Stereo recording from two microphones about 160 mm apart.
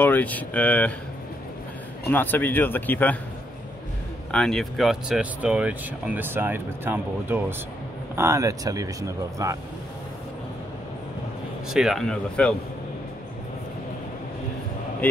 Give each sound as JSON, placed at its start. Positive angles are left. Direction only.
{"t": 0.0, "sound": "speech", "side_deg": 10}
{"t": 2.0, "sound": "speech", "side_deg": 10}
{"t": 4.3, "sound": "speech", "side_deg": 5}
{"t": 11.7, "sound": "speech", "side_deg": 0}